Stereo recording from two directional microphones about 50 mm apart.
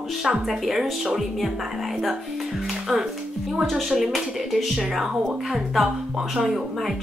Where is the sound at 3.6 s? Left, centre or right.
Centre.